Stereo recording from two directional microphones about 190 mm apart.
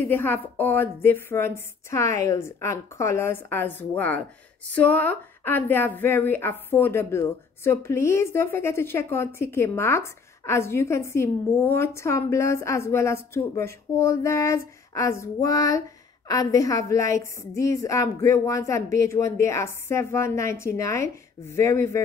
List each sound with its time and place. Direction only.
0.0 s a woman's voice: 10° left (ahead or behind)